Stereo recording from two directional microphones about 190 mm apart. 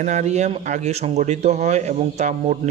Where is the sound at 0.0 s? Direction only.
40° right (ahead or behind).